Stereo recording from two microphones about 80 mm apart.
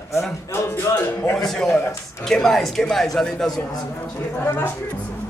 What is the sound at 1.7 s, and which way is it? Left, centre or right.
Speech, left.